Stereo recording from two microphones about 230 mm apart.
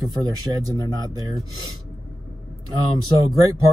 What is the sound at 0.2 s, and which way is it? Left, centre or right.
Speech, centre.